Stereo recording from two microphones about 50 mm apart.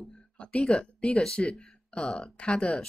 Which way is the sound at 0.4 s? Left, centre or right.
Left.